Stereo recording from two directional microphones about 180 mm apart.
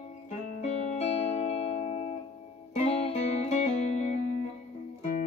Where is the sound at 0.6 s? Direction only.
35° left (ahead or behind).